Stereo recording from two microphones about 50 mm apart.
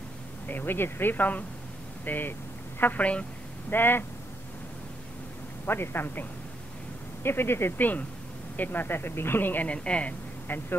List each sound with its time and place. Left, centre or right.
0.5 s a woman's voice: left
3.7 s speech: left
5.7 s speech: left
7.2 s speech: left
7.7 s speech: left
9.7 s a woman's voice: left
10.5 s speech: left